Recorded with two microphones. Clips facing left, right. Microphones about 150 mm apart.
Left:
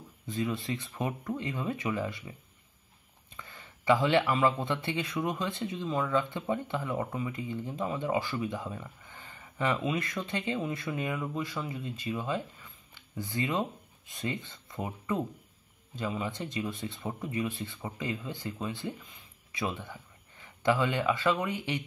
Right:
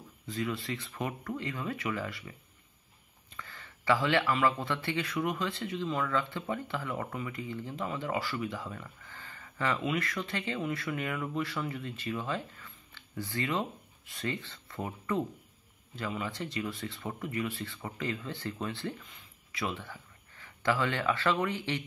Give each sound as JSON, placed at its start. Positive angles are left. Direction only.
{"t": 0.3, "sound": "speech", "side_deg": 20}
{"t": 3.3, "sound": "speech", "side_deg": 20}